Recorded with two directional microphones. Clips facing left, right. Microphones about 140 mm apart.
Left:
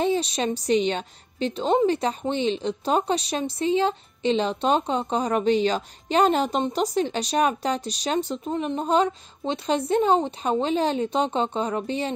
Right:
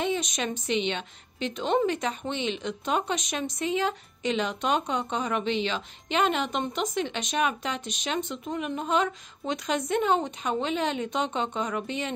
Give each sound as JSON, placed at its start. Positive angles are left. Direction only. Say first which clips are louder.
{"t": 0.0, "sound": "a woman's voice", "louder": "left 5 dB", "side_deg": 35}